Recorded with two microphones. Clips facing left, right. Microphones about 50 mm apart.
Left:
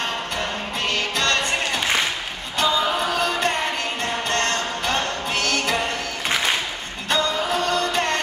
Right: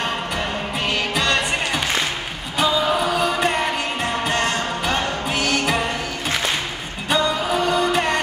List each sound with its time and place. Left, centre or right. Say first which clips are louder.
0.0 s music: right 2 dB; centre
7.1 s music: right 2 dB; centre